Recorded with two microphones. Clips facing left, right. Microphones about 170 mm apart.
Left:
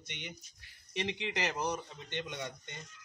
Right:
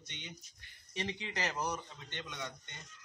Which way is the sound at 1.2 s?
15° left (ahead or behind).